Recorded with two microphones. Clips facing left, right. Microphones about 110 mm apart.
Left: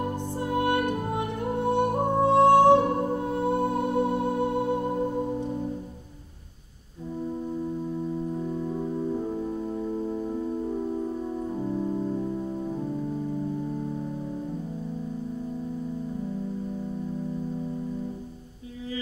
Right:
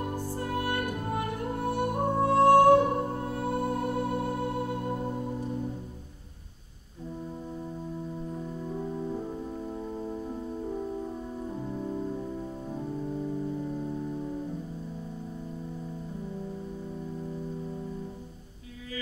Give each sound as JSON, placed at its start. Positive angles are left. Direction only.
{"t": 0.1, "sound": "music", "side_deg": 20}